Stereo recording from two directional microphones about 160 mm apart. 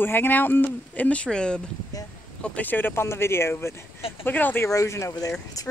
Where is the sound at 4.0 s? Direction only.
35° left (ahead or behind).